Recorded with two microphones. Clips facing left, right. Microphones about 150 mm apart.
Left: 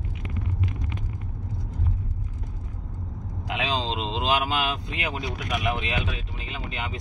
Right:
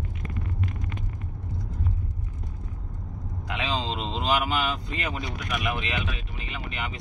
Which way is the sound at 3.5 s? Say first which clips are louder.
Left 2 dB; 15° left (ahead or behind).